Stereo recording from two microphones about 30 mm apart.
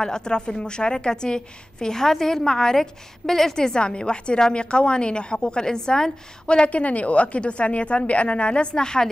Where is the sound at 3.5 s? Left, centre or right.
Left.